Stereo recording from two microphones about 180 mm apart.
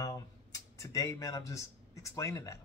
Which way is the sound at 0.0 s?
20° left (ahead or behind).